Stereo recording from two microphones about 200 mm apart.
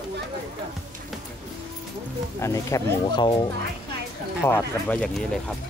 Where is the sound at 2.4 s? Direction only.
15° left (ahead or behind).